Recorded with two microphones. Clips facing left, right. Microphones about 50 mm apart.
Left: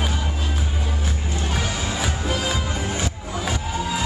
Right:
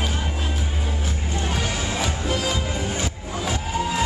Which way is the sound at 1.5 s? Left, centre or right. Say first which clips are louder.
Left 1 dB; centre.